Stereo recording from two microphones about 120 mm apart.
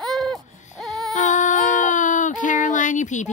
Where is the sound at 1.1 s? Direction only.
90° left.